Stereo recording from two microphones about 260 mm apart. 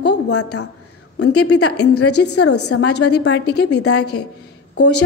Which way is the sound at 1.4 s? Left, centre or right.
Left.